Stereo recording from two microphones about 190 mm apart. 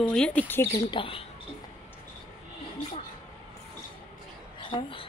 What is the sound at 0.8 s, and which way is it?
Speech, 30° left (ahead or behind).